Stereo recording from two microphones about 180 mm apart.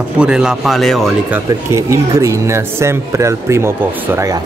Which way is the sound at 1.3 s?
15° right (ahead or behind).